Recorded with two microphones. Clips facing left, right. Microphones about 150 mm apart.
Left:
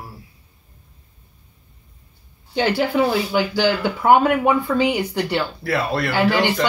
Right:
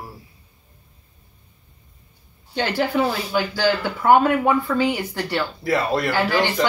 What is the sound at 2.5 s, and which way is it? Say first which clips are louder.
Speech: left 2 dB; 15° left (ahead or behind).